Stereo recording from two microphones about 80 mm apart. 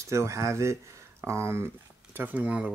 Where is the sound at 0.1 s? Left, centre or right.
Right.